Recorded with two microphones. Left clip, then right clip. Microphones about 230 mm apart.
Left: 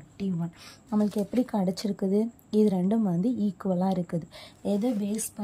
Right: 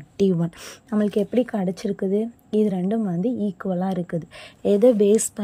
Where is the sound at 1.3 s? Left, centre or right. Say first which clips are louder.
Right 5 dB; centre.